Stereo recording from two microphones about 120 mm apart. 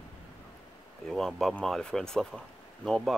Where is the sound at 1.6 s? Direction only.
5° left (ahead or behind).